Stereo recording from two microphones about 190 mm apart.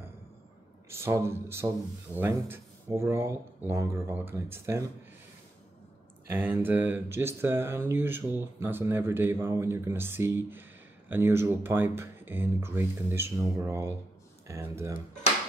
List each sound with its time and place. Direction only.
0.8 s speech: 15° right (ahead or behind)
6.2 s speech: 10° right (ahead or behind)